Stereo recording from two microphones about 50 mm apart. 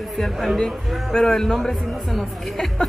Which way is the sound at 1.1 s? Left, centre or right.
Centre.